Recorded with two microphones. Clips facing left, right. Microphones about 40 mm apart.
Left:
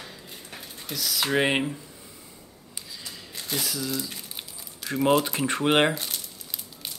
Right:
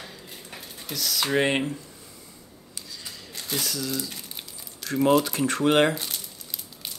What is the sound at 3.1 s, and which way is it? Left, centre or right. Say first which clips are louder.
Crumpling: even; centre.